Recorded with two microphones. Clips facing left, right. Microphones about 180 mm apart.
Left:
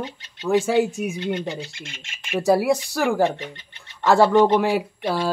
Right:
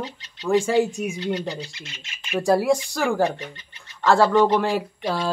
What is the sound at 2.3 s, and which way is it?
Speech, 5° left (ahead or behind).